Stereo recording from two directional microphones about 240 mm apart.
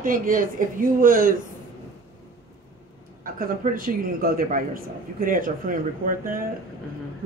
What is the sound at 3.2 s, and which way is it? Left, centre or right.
A man's voice, right.